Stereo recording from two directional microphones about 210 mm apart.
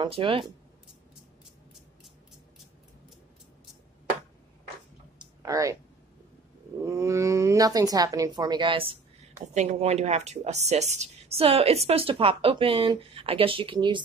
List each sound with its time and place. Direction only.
0.0 s speech: 25° right (ahead or behind)
5.2 s a sound: 15° right (ahead or behind)
6.8 s speech: 15° right (ahead or behind)